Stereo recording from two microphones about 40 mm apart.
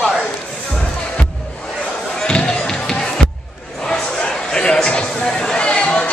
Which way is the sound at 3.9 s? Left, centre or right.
Centre.